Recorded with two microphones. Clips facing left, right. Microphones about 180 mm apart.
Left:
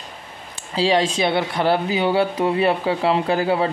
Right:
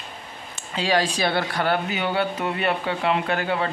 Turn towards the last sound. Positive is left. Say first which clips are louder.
# left 5 dB
turn(degrees=30)  # may be behind; listen again after turning